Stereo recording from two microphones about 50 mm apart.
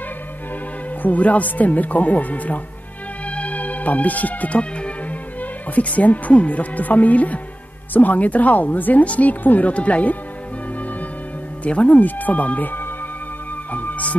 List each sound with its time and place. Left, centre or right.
1.0 s speech: left
3.3 s music: left
5.4 s speech: left
11.6 s speech: left
13.7 s music: left